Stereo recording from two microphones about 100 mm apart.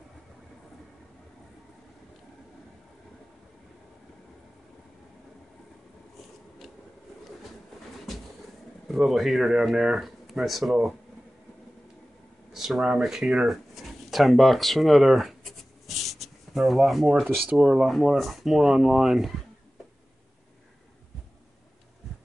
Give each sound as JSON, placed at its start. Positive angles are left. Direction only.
{"t": 8.8, "sound": "speech", "side_deg": 0}
{"t": 12.5, "sound": "speech", "side_deg": -5}